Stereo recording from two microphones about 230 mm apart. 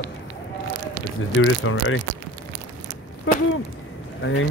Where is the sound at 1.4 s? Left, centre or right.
Left.